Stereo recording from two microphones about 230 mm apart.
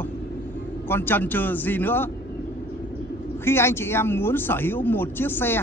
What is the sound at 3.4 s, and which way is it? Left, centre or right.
Speech, centre.